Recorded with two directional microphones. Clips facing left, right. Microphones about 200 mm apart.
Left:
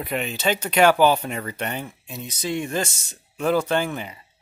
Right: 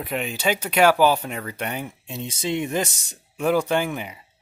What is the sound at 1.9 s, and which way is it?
Speech, 25° right (ahead or behind).